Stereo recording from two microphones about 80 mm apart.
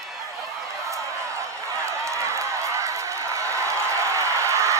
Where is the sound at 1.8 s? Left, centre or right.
Right.